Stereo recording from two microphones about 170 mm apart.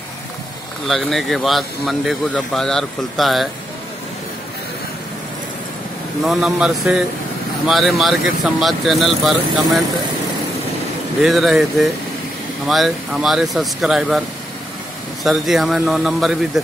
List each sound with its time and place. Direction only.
0.8 s speech: centre (ahead or behind)
6.2 s speech: 5° right (ahead or behind)
11.2 s speech: centre (ahead or behind)
15.2 s speech: centre (ahead or behind)